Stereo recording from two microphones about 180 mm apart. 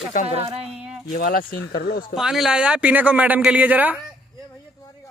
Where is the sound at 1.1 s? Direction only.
45° left (ahead or behind).